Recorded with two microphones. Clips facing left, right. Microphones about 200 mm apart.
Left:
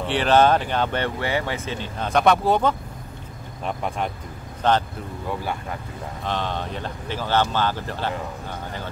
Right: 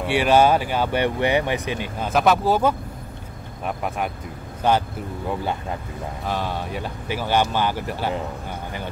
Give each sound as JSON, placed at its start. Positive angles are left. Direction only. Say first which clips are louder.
{"t": 0.0, "sound": "speech", "louder": "right 1 dB", "side_deg": -10}
{"t": 5.4, "sound": "speech", "louder": "right 3 dB", "side_deg": -20}
{"t": 6.2, "sound": "speech", "louder": "even", "side_deg": -10}